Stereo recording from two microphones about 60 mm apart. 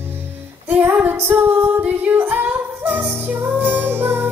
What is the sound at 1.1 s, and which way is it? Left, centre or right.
Music, right.